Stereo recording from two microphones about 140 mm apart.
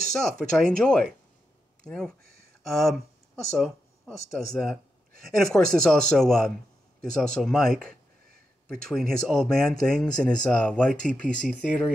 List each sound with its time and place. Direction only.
0.1 s speech: 5° left (ahead or behind)